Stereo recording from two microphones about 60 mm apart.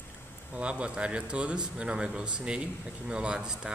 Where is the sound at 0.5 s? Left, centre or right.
Centre.